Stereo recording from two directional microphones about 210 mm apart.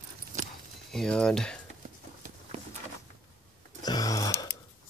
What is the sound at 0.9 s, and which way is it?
Speech, 5° left (ahead or behind).